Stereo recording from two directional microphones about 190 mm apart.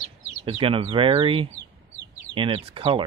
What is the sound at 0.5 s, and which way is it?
Speech, 30° right (ahead or behind).